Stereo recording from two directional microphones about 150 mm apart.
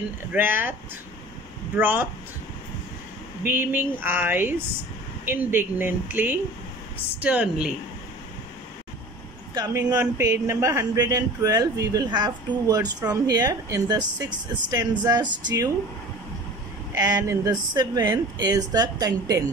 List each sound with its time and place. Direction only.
0.3 s speech: 15° right (ahead or behind)
1.8 s speech: 15° right (ahead or behind)
3.4 s speech: 15° right (ahead or behind)
9.5 s speech: 25° right (ahead or behind)
16.9 s speech: 20° right (ahead or behind)